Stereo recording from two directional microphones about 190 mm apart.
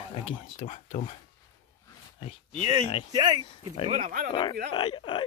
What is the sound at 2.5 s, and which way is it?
Speech, 25° right (ahead or behind).